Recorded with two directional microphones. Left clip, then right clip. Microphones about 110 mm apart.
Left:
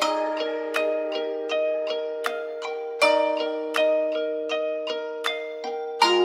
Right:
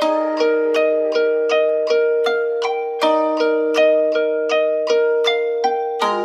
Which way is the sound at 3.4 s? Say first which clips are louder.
Right 9 dB; 25° right (ahead or behind).